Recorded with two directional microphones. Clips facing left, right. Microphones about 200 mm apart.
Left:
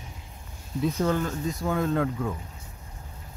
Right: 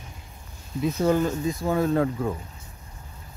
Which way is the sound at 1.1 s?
10° right (ahead or behind).